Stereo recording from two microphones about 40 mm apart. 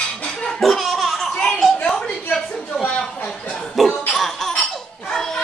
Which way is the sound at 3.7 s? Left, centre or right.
Centre.